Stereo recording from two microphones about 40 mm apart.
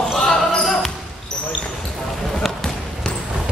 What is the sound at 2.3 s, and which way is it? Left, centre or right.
Basketball bounce, centre.